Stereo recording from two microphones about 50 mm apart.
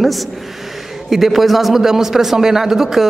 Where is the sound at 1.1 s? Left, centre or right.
Centre.